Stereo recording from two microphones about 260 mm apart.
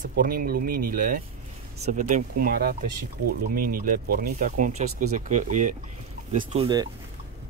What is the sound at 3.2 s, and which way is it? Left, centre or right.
Speech, right.